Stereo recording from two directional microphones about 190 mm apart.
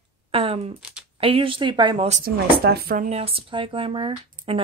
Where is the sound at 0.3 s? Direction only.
30° right (ahead or behind).